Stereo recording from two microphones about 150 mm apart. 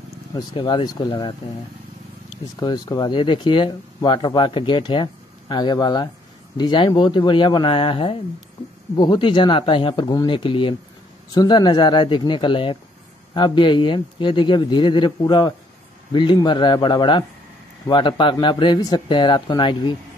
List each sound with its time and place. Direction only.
0.3 s speech: 30° left (ahead or behind)
2.6 s a man's voice: 25° left (ahead or behind)